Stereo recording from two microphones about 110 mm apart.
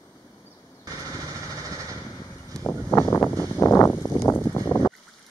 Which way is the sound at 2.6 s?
25° left (ahead or behind).